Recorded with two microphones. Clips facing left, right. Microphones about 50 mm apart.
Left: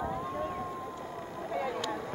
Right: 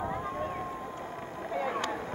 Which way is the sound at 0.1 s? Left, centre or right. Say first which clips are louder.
Right 1 dB; right.